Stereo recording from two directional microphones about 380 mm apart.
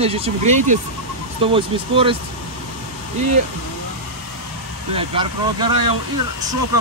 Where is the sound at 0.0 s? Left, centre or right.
Centre.